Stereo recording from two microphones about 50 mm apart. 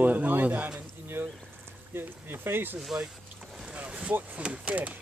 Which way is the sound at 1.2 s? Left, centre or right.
Right.